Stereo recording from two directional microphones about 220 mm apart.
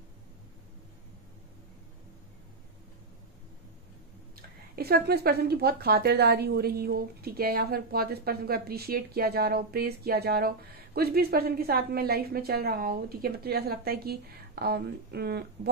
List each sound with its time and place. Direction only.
4.4 s a woman's voice: 45° right (ahead or behind)